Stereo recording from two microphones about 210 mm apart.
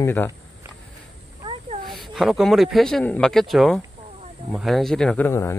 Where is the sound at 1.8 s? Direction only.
Centre (ahead or behind).